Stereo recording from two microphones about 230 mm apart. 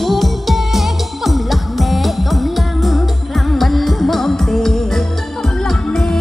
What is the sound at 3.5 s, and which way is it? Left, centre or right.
Music, centre.